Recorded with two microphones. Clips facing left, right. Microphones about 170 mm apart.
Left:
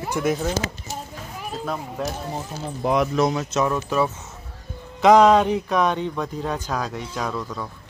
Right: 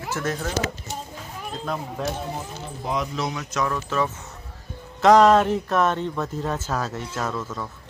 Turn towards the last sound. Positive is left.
turn(degrees=-5)  # may be behind; listen again after turning